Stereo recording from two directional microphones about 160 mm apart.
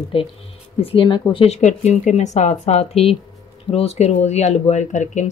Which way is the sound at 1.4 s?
45° left (ahead or behind).